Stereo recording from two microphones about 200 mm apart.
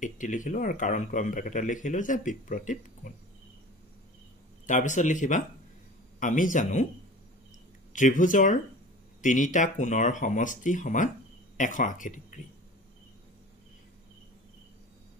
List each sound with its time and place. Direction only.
0.0 s a man's voice: 40° left (ahead or behind)
4.6 s a man's voice: 40° left (ahead or behind)
7.9 s a man's voice: 40° left (ahead or behind)